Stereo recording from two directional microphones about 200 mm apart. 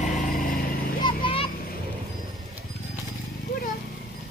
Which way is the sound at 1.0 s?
25° left (ahead or behind).